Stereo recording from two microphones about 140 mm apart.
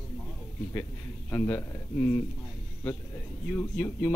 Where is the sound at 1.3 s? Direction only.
15° left (ahead or behind).